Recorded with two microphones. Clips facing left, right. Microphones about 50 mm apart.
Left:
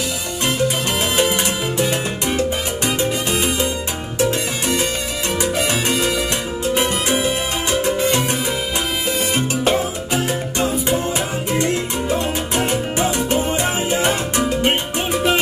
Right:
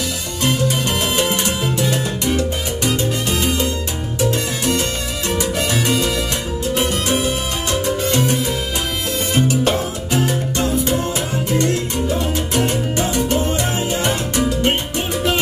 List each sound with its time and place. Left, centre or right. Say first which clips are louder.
1.4 s salsa music: even; centre
2.9 s music: even; centre
10.2 s music: right 1 dB; centre
11.5 s salsa music: right 1 dB; centre
13.9 s music: left 1 dB; centre